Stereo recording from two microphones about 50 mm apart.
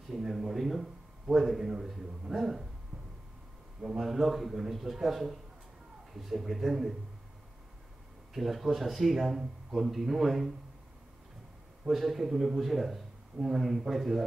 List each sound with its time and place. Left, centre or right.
0.1 s a man's voice: centre
3.8 s a man's voice: centre
8.3 s a man's voice: centre
11.9 s a man's voice: centre